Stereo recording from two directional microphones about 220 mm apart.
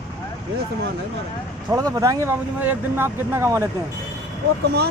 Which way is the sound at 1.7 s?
15° right (ahead or behind).